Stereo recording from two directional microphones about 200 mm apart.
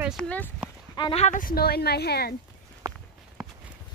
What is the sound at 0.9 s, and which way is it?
Speech, 30° left (ahead or behind).